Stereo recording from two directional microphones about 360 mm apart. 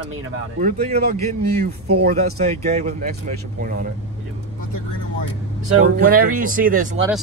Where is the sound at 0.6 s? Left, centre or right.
Right.